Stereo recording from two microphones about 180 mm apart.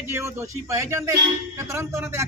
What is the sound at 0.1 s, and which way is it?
A man's voice, 15° right (ahead or behind).